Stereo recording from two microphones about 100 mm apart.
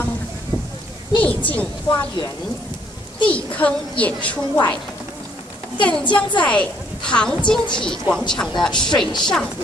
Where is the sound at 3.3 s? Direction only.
15° left (ahead or behind).